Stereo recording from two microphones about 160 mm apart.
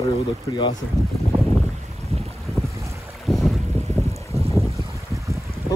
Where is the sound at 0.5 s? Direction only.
30° left (ahead or behind).